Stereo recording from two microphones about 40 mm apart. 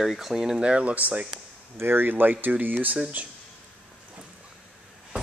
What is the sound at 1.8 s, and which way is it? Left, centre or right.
Speech, right.